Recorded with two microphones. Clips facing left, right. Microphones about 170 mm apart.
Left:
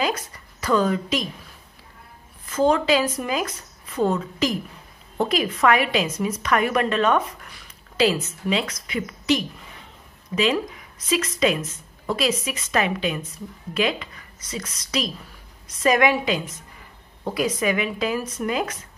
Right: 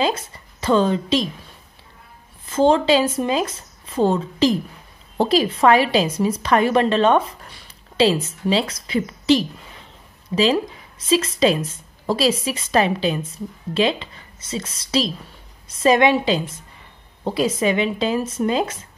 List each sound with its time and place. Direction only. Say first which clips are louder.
0.0 s speech: right 4 dB; 25° right (ahead or behind)
2.4 s a woman's voice: right 4 dB; 30° right (ahead or behind)